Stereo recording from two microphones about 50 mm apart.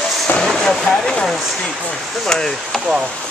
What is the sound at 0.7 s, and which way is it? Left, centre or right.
Vehicle, centre.